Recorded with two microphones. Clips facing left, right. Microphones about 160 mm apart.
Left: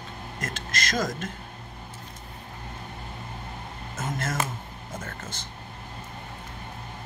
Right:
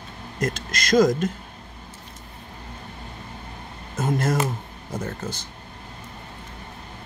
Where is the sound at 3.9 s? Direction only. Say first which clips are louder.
Right 8 dB; 35° right (ahead or behind).